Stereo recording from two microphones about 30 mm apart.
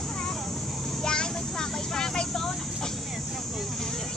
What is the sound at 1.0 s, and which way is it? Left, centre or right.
Vehicle, left.